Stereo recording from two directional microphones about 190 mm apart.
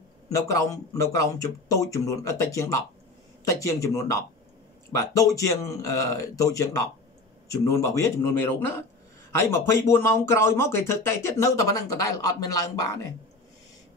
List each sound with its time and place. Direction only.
0.3 s speech: 15° left (ahead or behind)